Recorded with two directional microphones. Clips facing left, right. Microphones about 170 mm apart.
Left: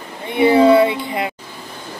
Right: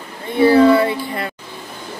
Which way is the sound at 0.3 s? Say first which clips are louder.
Even; 20° left (ahead or behind).